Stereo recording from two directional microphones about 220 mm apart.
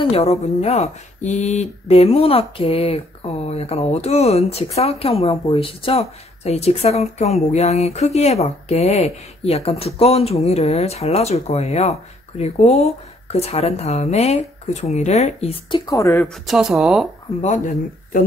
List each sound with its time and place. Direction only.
0.0 s speech: 30° left (ahead or behind)
16.4 s speech: centre (ahead or behind)
17.4 s a man's voice: 35° left (ahead or behind)